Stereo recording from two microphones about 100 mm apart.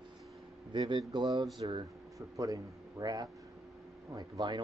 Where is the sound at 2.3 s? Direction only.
35° right (ahead or behind).